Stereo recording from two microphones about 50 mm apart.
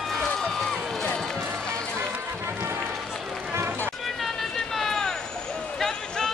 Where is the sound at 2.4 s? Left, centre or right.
Right.